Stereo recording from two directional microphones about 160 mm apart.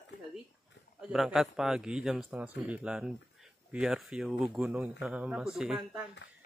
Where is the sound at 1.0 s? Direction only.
Centre (ahead or behind).